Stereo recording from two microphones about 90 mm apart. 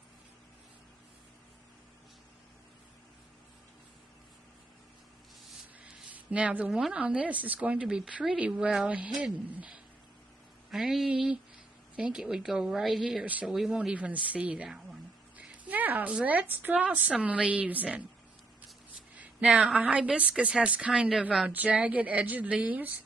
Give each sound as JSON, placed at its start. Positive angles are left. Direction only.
{"t": 6.1, "sound": "a woman's voice", "side_deg": -15}
{"t": 10.7, "sound": "a sound", "side_deg": -5}
{"t": 12.0, "sound": "a woman's voice", "side_deg": -10}
{"t": 13.2, "sound": "a woman's voice", "side_deg": -15}
{"t": 19.1, "sound": "a woman's voice", "side_deg": -15}